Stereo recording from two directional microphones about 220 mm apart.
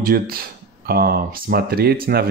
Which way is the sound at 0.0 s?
45° right (ahead or behind).